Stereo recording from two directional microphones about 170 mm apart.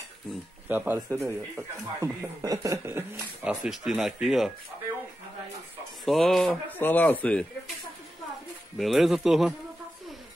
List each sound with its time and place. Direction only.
0.7 s speech: 10° right (ahead or behind)
6.0 s speech: centre (ahead or behind)
8.7 s speech: centre (ahead or behind)